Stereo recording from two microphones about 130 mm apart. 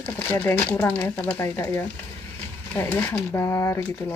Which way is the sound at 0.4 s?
15° left (ahead or behind).